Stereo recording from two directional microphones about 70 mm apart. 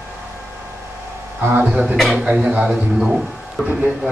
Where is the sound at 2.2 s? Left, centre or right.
Centre.